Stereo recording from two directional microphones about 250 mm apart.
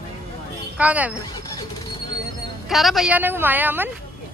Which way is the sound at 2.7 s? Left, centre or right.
Centre.